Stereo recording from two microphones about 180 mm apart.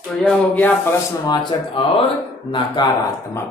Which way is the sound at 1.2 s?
25° left (ahead or behind).